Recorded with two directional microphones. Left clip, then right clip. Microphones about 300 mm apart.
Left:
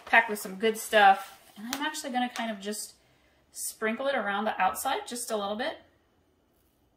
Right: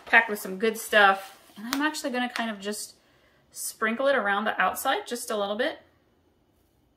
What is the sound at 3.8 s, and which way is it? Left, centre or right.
Speech, centre.